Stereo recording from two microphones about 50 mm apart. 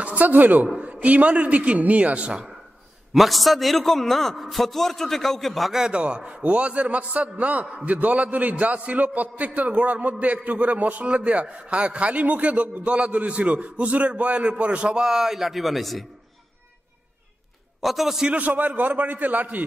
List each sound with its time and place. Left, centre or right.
0.0 s a man's voice: right
3.1 s a man's voice: centre
5.8 s a man's voice: centre
15.0 s a man's voice: centre
17.8 s a man's voice: centre
18.3 s a man's voice: right